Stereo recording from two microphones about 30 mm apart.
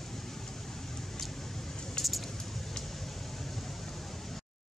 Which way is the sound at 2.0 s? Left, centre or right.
Left.